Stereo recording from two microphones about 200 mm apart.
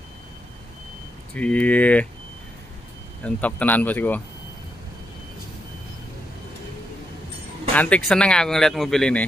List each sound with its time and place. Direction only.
1.3 s speech: 5° left (ahead or behind)
3.3 s speech: 5° left (ahead or behind)
7.7 s speech: 5° left (ahead or behind)